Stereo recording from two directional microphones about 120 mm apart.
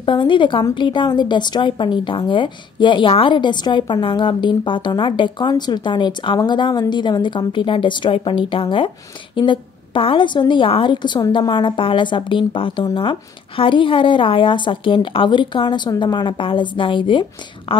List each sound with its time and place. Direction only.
0.0 s a woman's voice: 45° left (ahead or behind)